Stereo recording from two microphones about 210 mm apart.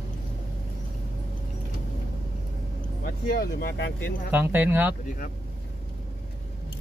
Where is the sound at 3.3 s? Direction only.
50° left (ahead or behind).